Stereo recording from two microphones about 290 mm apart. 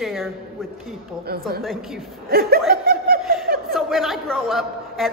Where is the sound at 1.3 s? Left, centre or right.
Right.